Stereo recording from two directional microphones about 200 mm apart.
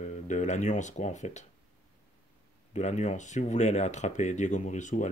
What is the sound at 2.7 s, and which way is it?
Speech, 35° left (ahead or behind).